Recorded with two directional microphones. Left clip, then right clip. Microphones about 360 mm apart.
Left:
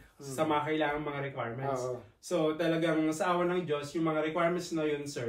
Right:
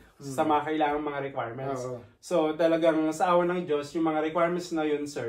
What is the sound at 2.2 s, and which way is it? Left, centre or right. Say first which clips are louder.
Speech: right 5 dB; centre.